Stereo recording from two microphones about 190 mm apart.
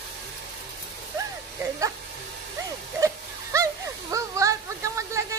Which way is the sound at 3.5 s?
15° right (ahead or behind).